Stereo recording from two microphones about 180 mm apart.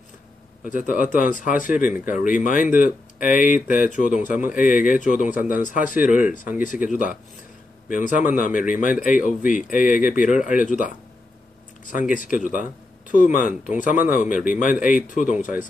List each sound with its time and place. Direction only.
0.7 s speech: 45° left (ahead or behind)